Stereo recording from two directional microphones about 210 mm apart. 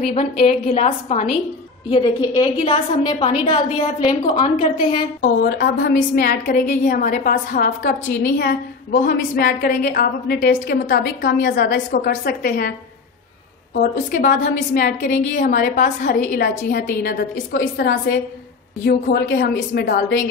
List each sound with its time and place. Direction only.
0.1 s a woman's voice: 30° left (ahead or behind)
1.9 s a woman's voice: 20° left (ahead or behind)
5.2 s a woman's voice: 50° left (ahead or behind)
13.7 s a woman's voice: 40° left (ahead or behind)